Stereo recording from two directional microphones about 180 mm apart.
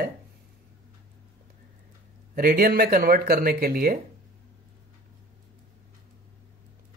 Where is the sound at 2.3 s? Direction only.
55° right (ahead or behind).